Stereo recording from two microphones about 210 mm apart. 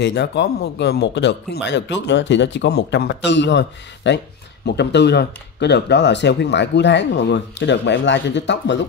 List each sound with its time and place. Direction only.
0.0 s speech: 55° left (ahead or behind)